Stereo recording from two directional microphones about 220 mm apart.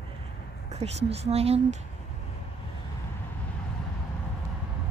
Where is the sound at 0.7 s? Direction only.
30° right (ahead or behind).